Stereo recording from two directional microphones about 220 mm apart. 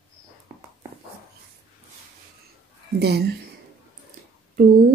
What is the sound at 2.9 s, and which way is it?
Speech, 45° right (ahead or behind).